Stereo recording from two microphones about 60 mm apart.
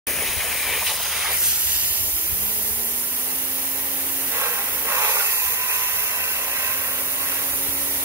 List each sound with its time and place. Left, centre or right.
0.2 s hiss: centre
4.4 s hair dryer: right